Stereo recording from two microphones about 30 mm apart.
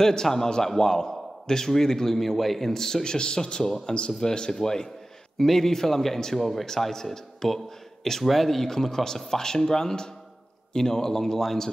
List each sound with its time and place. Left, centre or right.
0.0 s a man's voice: centre
2.7 s a man's voice: centre